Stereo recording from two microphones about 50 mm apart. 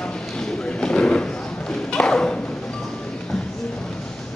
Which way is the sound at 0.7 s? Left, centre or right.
Centre.